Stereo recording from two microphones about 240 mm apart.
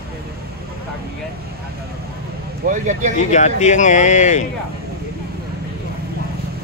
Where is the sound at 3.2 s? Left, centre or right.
Left.